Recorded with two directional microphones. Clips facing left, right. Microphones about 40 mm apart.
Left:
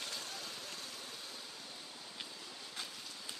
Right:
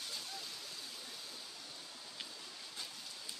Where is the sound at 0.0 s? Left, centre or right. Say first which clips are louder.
Left 2 dB; left.